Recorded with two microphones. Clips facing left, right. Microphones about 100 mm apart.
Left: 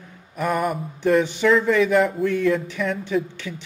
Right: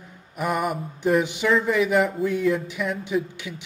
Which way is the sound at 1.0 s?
15° right (ahead or behind).